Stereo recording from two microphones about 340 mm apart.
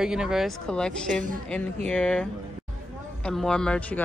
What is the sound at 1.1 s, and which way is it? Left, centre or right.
Speech, right.